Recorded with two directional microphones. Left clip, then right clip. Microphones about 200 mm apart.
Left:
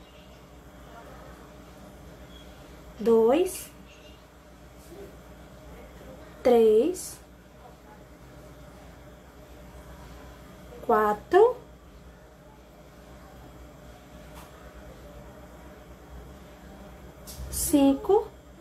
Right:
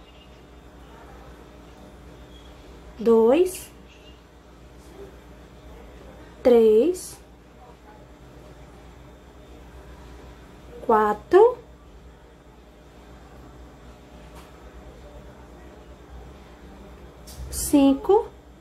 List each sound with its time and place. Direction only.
3.0 s a woman's voice: 10° right (ahead or behind)
6.4 s a woman's voice: 10° right (ahead or behind)
10.9 s a woman's voice: 10° right (ahead or behind)
17.5 s a sound: 10° right (ahead or behind)